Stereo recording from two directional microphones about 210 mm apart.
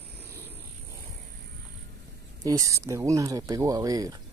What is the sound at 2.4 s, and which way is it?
Speech, 15° right (ahead or behind).